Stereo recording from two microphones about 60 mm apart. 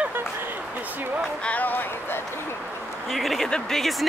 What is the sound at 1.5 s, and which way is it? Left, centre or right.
Speech, left.